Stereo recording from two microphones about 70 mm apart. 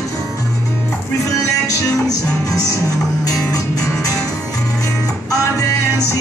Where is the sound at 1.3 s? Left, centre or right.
Left.